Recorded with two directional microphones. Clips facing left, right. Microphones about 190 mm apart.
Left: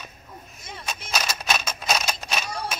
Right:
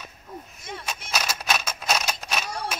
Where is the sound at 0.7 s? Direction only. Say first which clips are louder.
Even; 5° right (ahead or behind).